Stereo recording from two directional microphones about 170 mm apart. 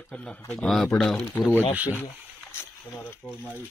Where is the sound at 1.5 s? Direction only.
10° left (ahead or behind).